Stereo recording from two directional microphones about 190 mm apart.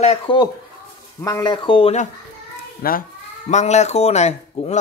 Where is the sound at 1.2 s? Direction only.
20° left (ahead or behind).